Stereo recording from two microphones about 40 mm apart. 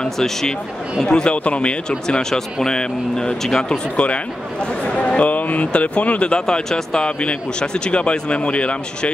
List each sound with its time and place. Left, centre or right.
0.0 s speech: centre
1.0 s speech: left
3.9 s speech: left
6.4 s speech: centre